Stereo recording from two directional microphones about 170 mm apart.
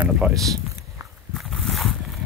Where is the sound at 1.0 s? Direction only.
20° right (ahead or behind).